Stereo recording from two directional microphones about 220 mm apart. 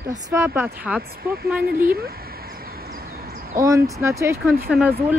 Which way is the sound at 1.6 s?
45° right (ahead or behind).